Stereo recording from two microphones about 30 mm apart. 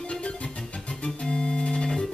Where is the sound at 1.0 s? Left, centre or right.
Left.